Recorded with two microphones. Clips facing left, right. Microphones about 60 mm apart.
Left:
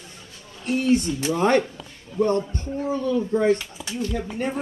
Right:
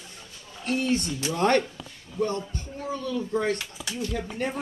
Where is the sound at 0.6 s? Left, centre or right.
Centre.